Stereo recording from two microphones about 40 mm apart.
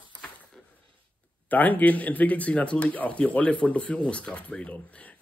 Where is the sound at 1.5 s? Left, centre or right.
Left.